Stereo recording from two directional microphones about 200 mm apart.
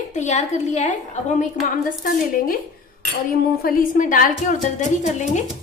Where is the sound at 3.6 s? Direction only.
45° left (ahead or behind).